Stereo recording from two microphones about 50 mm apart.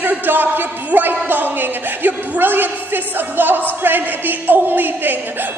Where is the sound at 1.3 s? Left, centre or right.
Right.